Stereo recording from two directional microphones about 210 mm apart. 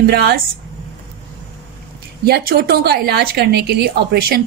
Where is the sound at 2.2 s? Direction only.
45° right (ahead or behind).